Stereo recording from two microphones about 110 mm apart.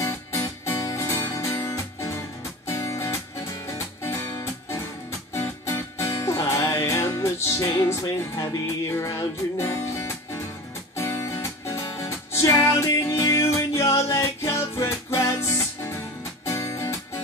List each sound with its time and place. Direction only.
0.0 s music: 25° left (ahead or behind)